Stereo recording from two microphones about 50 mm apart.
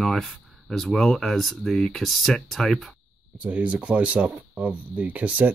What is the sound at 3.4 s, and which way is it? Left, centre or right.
Speech, right.